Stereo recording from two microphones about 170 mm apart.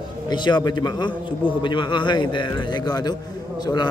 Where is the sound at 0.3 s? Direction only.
25° left (ahead or behind).